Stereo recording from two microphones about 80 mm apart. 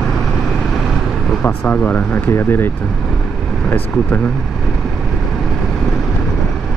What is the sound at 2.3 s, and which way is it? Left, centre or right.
Speech, left.